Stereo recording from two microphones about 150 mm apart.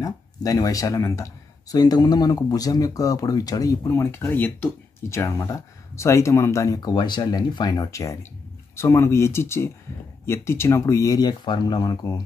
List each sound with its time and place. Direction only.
0.0 s speech: 25° left (ahead or behind)